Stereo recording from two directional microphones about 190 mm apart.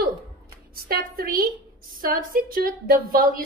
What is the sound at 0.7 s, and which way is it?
A woman's voice, 50° right (ahead or behind).